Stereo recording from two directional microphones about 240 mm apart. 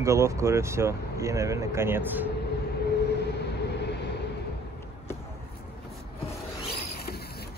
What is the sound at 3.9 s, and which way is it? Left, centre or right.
Vehicle, left.